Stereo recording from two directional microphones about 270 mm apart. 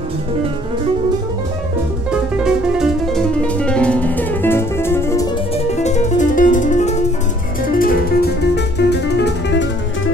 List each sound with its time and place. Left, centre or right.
2.0 s music: centre
5.8 s music: left